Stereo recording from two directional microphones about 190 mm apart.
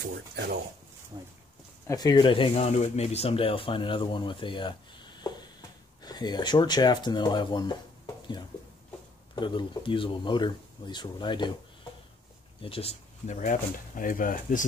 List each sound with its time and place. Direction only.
0.0 s speech: 65° right (ahead or behind)
1.1 s speech: 25° right (ahead or behind)
1.9 s speech: 20° left (ahead or behind)
9.3 s speech: 25° left (ahead or behind)
12.6 s speech: 30° left (ahead or behind)